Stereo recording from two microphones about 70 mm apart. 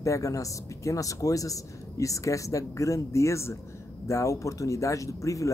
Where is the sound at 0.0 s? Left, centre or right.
Left.